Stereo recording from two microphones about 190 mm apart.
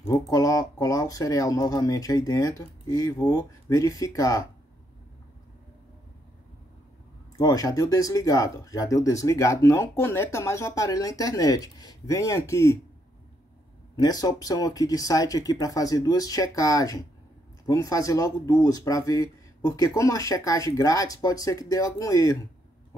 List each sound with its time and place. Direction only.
0.0 s speech: 20° left (ahead or behind)
7.3 s speech: 20° left (ahead or behind)
13.9 s speech: 20° left (ahead or behind)